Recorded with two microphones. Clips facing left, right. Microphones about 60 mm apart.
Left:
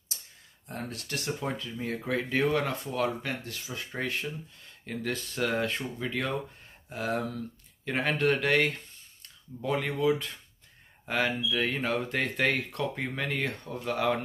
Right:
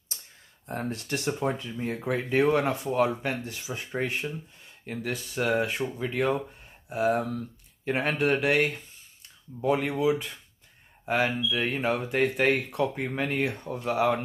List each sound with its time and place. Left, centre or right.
0.7 s speech: right
4.8 s speech: centre